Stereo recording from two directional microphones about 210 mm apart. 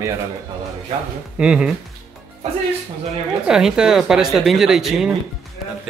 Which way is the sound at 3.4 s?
5° right (ahead or behind).